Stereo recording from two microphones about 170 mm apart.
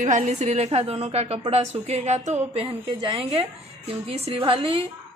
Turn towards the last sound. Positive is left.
turn(degrees=-30)  # may be behind; listen again after turning